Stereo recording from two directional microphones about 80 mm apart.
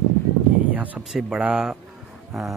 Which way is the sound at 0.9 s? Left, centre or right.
Centre.